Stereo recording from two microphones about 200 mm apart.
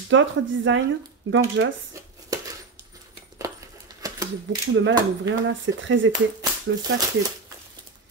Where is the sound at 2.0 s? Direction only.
15° right (ahead or behind).